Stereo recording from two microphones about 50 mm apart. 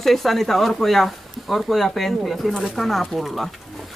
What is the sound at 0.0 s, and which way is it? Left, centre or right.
Speech, centre.